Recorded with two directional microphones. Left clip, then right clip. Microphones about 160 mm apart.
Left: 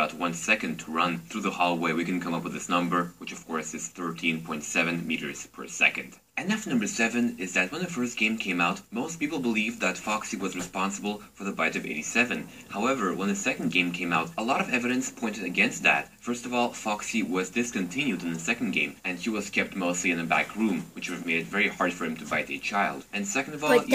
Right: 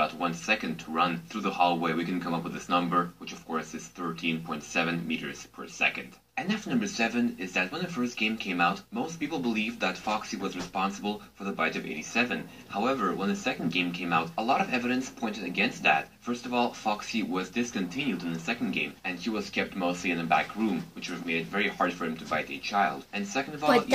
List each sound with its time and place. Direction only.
0.5 s speech: 5° left (ahead or behind)
4.1 s speech: 5° left (ahead or behind)